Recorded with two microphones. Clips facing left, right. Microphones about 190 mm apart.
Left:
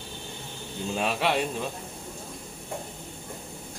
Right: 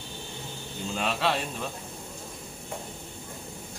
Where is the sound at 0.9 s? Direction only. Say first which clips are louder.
Left 2 dB; 15° left (ahead or behind).